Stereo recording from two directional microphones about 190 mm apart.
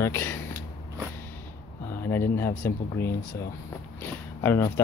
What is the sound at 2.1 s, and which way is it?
Speech, 10° left (ahead or behind).